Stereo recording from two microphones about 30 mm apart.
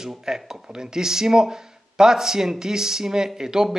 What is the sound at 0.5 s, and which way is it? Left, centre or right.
Speech, right.